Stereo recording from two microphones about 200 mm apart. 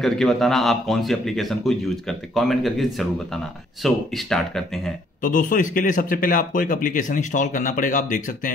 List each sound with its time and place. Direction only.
0.0 s a man's voice: centre (ahead or behind)
5.2 s speech: 40° left (ahead or behind)